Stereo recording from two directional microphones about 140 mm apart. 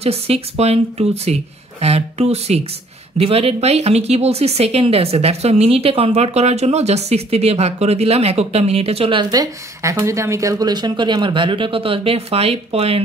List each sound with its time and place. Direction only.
0.0 s a woman's voice: 45° right (ahead or behind)